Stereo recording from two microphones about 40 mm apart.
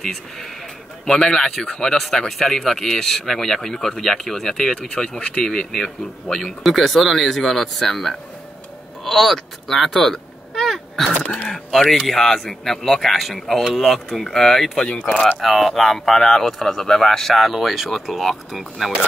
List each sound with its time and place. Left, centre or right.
0.0 s a man's voice: centre
6.6 s a man's voice: centre
9.0 s a sound: centre
11.4 s a man's voice: centre